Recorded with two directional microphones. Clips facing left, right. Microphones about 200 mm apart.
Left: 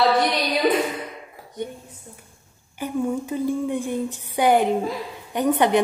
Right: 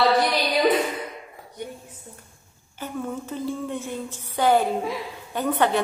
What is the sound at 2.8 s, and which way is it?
A woman's voice, 15° left (ahead or behind).